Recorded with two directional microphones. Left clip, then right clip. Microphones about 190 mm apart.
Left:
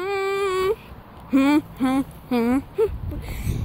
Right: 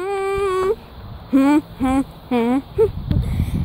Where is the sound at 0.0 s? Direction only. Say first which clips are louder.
Right 3 dB; 10° right (ahead or behind).